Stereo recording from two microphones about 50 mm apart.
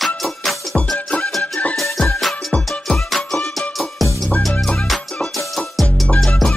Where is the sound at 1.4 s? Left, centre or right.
Left.